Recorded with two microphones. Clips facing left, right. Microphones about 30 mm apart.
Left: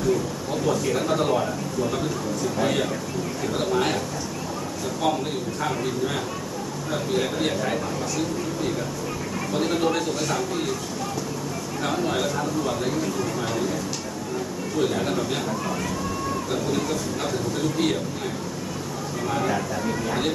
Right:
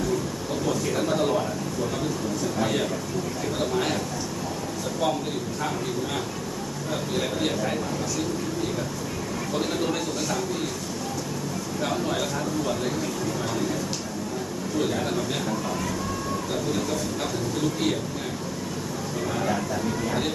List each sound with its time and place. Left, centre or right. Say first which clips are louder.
0.7 s speech: left 3 dB; centre
3.5 s speech: left 3 dB; centre
7.2 s speech: left 1 dB; centre
9.6 s speech: left 4 dB; centre